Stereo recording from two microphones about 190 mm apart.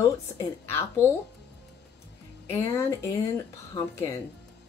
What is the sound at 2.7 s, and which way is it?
Speech, 15° left (ahead or behind).